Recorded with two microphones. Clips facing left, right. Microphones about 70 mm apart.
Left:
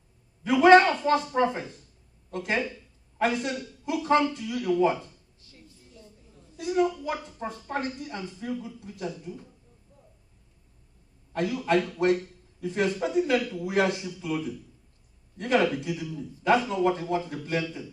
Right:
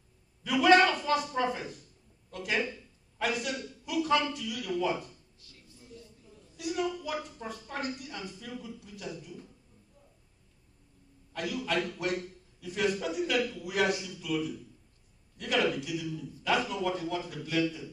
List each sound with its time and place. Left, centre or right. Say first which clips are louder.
0.4 s a man's voice: left 6 dB; left
11.3 s a man's voice: left 7 dB; left